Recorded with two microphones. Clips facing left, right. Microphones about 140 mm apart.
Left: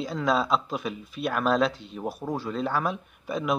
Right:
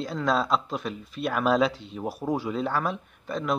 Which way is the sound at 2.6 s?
Centre (ahead or behind).